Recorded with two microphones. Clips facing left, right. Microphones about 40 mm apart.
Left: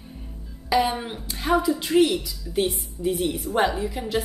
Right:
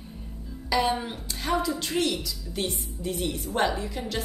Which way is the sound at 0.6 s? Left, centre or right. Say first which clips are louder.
Left 3 dB; centre.